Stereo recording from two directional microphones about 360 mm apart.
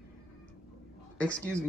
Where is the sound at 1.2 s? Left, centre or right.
Centre.